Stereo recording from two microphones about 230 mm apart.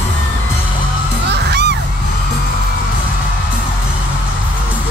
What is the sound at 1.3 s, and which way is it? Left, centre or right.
Music, right.